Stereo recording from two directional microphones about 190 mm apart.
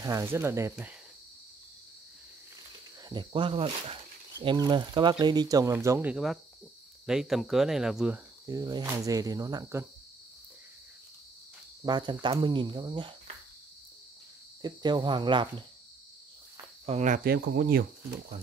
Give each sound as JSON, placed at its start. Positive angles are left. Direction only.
{"t": 0.0, "sound": "speech", "side_deg": -15}
{"t": 3.1, "sound": "speech", "side_deg": -25}
{"t": 8.5, "sound": "cricket", "side_deg": -20}
{"t": 11.8, "sound": "cricket", "side_deg": -25}
{"t": 14.6, "sound": "cricket", "side_deg": -25}
{"t": 16.8, "sound": "speech", "side_deg": -35}